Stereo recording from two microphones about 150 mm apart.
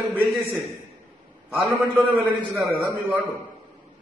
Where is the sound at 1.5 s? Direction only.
10° right (ahead or behind).